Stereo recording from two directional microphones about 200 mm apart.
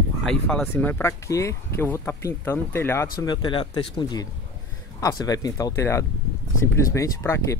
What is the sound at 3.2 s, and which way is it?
Speech, 20° left (ahead or behind).